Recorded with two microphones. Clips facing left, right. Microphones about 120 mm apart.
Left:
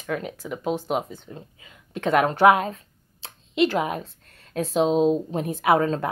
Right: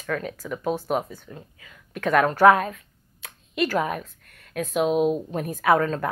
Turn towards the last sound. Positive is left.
turn(degrees=25)  # may be behind; listen again after turning